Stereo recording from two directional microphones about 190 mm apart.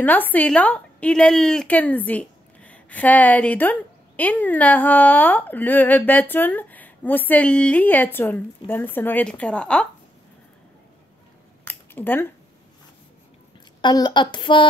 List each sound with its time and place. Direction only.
0.0 s a woman's voice: 10° left (ahead or behind)
11.6 s a sound: 10° left (ahead or behind)
13.7 s a woman's voice: 20° left (ahead or behind)